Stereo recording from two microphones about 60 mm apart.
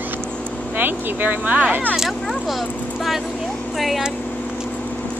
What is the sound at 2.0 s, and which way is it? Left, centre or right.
Speech, centre.